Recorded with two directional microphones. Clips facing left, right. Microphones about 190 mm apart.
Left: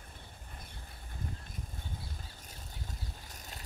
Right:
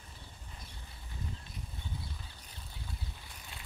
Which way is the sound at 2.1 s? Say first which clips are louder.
Left 2 dB; 45° left (ahead or behind).